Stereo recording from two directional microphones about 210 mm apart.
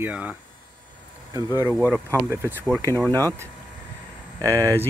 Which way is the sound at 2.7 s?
10° left (ahead or behind).